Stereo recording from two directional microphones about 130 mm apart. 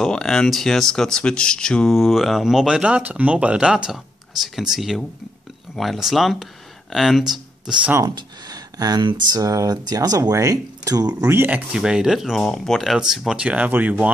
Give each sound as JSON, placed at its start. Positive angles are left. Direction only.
{"t": 0.0, "sound": "speech", "side_deg": 5}
{"t": 8.1, "sound": "speech", "side_deg": -30}
{"t": 11.7, "sound": "speech", "side_deg": -5}